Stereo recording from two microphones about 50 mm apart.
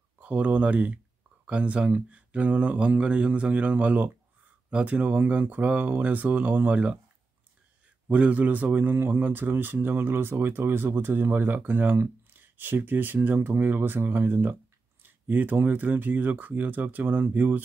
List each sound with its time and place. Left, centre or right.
0.2 s speech: right
5.0 s speech: right
8.1 s speech: right